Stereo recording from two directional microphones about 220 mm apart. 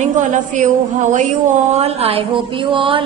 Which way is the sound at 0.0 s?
35° right (ahead or behind).